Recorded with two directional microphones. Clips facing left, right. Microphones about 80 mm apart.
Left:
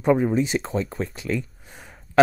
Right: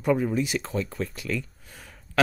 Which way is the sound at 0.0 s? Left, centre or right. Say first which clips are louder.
Left 4 dB; left.